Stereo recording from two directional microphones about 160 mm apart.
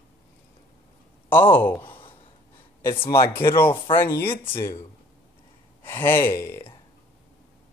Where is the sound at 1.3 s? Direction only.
10° left (ahead or behind).